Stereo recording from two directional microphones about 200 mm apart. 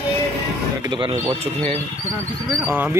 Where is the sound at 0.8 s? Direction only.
20° right (ahead or behind).